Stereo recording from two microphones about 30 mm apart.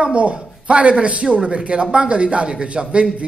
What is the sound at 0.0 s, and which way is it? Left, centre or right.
A man's voice, right.